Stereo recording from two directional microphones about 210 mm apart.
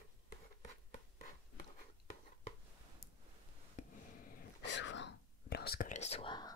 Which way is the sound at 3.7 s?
40° left (ahead or behind).